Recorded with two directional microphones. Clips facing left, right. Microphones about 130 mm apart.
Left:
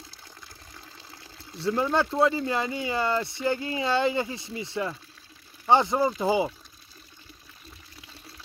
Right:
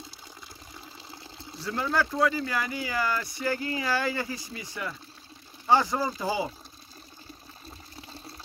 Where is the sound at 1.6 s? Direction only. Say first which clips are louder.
Left 4 dB; 25° left (ahead or behind).